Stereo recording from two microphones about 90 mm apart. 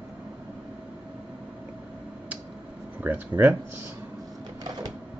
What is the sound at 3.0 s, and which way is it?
Speech, 20° right (ahead or behind).